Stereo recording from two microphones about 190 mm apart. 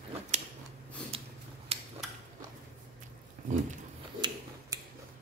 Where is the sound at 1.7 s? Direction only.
30° right (ahead or behind).